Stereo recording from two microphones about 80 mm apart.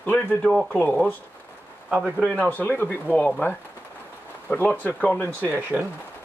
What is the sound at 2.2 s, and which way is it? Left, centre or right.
Speech, centre.